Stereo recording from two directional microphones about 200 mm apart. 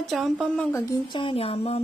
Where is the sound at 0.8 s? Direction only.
25° left (ahead or behind).